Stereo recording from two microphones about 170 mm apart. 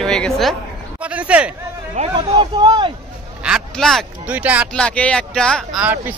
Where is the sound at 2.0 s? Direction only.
40° right (ahead or behind).